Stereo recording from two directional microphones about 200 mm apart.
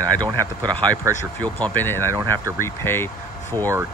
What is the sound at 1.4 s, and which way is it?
Speech, 10° left (ahead or behind).